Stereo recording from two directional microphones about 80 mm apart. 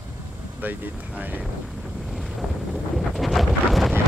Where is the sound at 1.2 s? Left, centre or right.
Right.